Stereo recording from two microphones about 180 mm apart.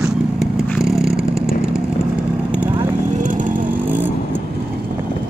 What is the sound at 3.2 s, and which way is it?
Vehicle, 45° right (ahead or behind).